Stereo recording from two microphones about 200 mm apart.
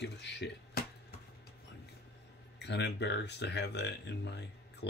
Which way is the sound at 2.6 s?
60° left (ahead or behind).